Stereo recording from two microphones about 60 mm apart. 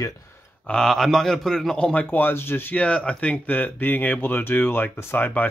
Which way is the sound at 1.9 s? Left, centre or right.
Left.